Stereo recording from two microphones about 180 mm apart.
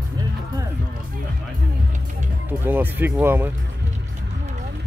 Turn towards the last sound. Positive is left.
turn(degrees=-10)  # may be behind; listen again after turning